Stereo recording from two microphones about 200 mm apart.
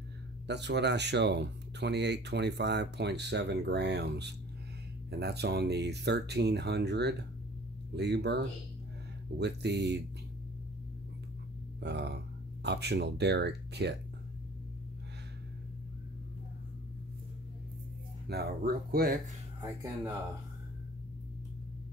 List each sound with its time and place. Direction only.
0.5 s speech: 60° right (ahead or behind)
9.4 s speech: 55° right (ahead or behind)
11.8 s speech: 60° right (ahead or behind)
18.3 s speech: 50° right (ahead or behind)